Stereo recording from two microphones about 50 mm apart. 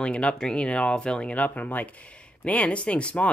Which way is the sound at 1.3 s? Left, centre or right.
Left.